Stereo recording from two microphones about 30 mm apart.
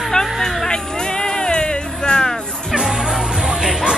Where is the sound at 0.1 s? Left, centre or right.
Centre.